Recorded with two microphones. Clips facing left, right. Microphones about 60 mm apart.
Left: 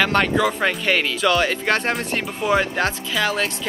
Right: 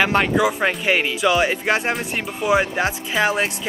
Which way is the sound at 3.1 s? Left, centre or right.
Right.